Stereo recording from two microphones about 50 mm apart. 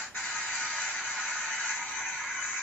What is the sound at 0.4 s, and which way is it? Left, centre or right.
Music, centre.